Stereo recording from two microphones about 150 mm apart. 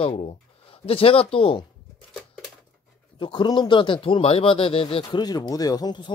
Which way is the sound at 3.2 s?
30° left (ahead or behind).